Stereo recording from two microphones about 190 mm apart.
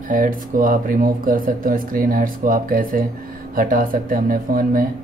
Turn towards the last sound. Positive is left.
turn(degrees=-50)  # may be behind; listen again after turning